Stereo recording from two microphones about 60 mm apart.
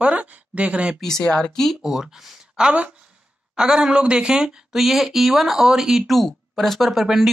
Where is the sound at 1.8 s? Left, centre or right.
Centre.